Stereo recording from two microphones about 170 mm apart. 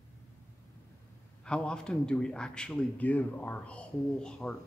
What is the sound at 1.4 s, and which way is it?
A man's voice, 5° left (ahead or behind).